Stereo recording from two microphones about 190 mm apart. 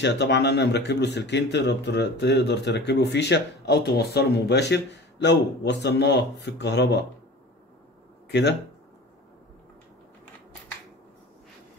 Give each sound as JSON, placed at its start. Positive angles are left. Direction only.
{"t": 0.0, "sound": "speech", "side_deg": 65}
{"t": 8.3, "sound": "speech", "side_deg": 65}